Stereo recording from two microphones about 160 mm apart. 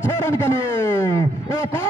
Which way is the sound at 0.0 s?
15° left (ahead or behind).